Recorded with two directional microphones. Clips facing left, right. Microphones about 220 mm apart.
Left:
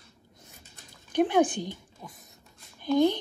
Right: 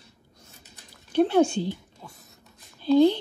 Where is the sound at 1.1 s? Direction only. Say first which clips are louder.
Right 3 dB; 15° left (ahead or behind).